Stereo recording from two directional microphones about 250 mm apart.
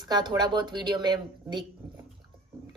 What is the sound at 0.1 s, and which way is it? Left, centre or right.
A child's voice, centre.